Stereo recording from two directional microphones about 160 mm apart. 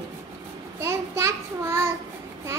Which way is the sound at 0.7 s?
15° right (ahead or behind).